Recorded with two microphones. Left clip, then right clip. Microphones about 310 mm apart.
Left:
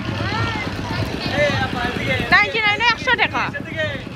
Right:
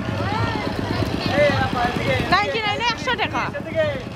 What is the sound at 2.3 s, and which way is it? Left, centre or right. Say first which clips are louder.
Speech: left 7 dB; centre.